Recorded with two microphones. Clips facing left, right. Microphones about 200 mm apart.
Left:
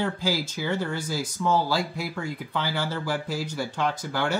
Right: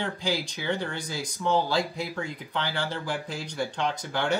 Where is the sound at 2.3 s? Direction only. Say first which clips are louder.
Left 2 dB; 10° left (ahead or behind).